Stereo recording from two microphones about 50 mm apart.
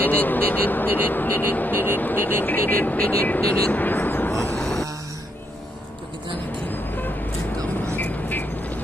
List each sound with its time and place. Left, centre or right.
0.0 s speech: left
4.3 s a sound: centre
7.7 s vehicle: left